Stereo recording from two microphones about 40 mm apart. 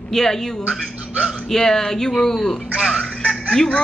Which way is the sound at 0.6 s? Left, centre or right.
Right.